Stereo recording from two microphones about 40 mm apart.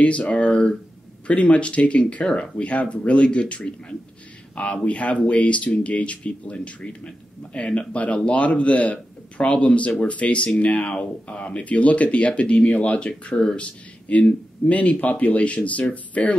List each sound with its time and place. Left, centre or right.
0.0 s a man's voice: left
4.8 s a man's voice: left
13.3 s speech: centre
13.6 s a man's voice: left